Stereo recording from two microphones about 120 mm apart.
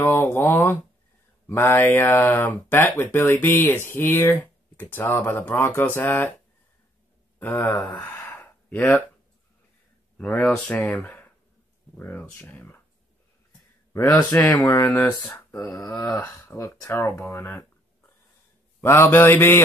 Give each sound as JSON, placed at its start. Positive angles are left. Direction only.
{"t": 0.0, "sound": "speech", "side_deg": 20}
{"t": 7.3, "sound": "speech", "side_deg": 20}
{"t": 10.4, "sound": "speech", "side_deg": 10}
{"t": 14.3, "sound": "speech", "side_deg": 10}
{"t": 16.2, "sound": "speech", "side_deg": 25}